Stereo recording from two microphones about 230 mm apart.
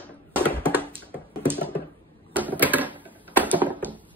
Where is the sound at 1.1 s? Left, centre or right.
Centre.